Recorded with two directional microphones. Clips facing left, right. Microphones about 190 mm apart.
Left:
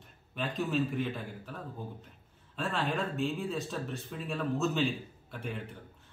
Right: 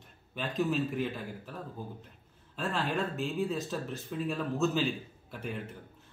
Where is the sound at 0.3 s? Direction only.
Centre (ahead or behind).